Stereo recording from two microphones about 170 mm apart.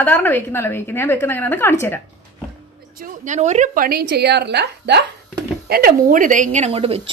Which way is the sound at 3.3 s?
45° right (ahead or behind).